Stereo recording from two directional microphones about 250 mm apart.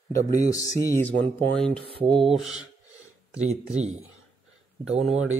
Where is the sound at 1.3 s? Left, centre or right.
Centre.